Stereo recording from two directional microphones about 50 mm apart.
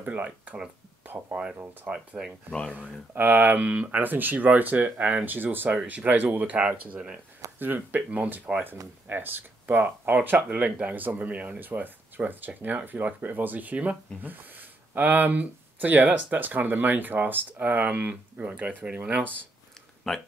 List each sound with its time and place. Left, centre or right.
0.0 s speech: right
2.7 s speech: right
6.4 s speech: right
7.5 s speech: right
8.6 s speech: right
10.9 s speech: right
20.1 s speech: centre